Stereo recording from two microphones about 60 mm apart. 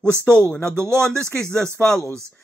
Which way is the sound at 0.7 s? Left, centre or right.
Right.